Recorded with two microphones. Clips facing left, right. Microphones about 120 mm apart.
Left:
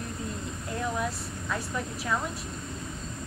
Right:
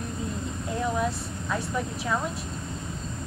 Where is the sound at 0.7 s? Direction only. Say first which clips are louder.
Right 4 dB; 5° right (ahead or behind).